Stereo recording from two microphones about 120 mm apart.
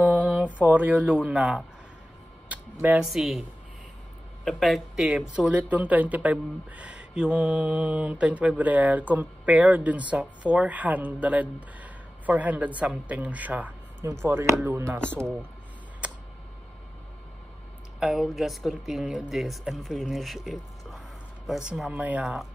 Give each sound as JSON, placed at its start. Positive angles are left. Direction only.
{"t": 0.0, "sound": "mantra", "side_deg": -10}
{"t": 2.5, "sound": "a sound", "side_deg": -10}
{"t": 3.1, "sound": "speech", "side_deg": 0}
{"t": 4.5, "sound": "speech", "side_deg": 0}
{"t": 16.0, "sound": "a sound", "side_deg": -10}
{"t": 17.9, "sound": "speech", "side_deg": -5}